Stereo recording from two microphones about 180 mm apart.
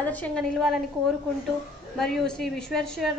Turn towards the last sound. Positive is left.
turn(degrees=0)  # may be behind; listen again after turning